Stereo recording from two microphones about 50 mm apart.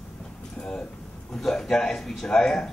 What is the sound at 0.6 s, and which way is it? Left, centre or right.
A man's voice, centre.